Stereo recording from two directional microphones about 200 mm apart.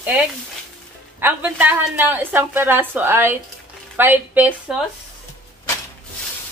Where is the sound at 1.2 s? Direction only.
10° right (ahead or behind).